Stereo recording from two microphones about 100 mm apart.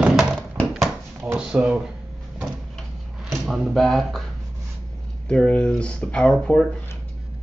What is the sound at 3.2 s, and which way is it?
Speech, centre (ahead or behind).